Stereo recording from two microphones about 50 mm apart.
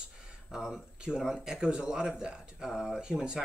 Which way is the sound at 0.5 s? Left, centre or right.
Centre.